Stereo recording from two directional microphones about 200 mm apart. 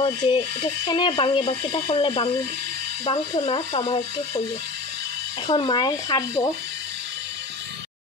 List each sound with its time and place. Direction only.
0.0 s speech: 20° left (ahead or behind)
5.5 s speech: 25° left (ahead or behind)